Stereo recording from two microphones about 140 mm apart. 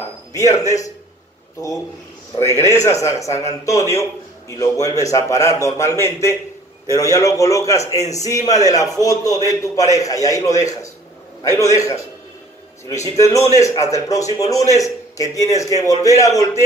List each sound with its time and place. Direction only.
0.3 s speech: 25° left (ahead or behind)
2.6 s a man's voice: 20° left (ahead or behind)